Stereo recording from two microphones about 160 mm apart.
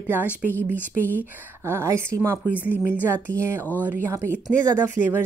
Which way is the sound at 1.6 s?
15° right (ahead or behind).